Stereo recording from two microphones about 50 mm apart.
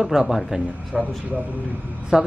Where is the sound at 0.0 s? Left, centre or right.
Centre.